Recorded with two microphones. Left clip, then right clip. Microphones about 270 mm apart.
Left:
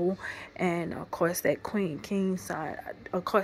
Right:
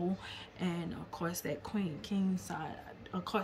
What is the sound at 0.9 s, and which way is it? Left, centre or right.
A woman's voice, centre.